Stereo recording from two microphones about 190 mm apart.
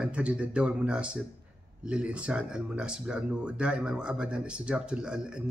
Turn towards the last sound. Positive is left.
turn(degrees=-5)  # may be behind; listen again after turning